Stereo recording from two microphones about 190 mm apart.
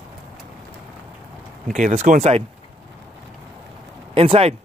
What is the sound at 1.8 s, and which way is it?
Speech, 40° right (ahead or behind).